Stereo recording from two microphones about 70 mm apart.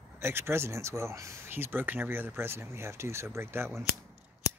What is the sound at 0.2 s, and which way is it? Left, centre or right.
Speech, right.